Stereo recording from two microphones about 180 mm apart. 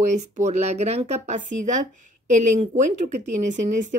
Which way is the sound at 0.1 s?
40° right (ahead or behind).